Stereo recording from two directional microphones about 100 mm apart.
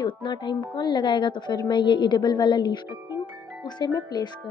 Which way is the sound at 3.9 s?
45° left (ahead or behind).